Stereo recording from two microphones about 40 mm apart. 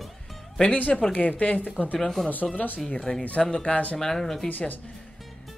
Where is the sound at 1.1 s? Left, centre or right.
Left.